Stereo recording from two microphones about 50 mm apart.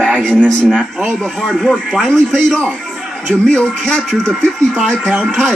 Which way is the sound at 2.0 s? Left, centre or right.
Centre.